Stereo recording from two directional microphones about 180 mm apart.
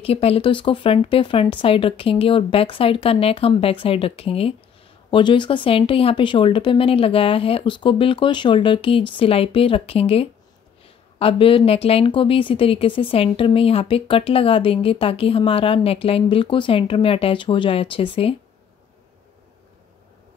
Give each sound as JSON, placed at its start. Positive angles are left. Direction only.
{"t": 0.0, "sound": "speech", "side_deg": 35}